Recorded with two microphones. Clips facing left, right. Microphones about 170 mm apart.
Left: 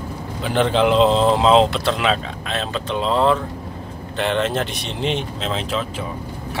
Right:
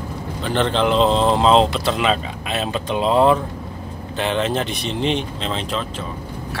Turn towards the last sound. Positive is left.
turn(degrees=5)  # may be behind; listen again after turning